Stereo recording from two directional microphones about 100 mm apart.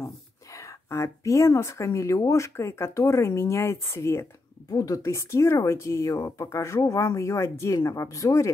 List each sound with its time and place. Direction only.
0.8 s speech: 30° left (ahead or behind)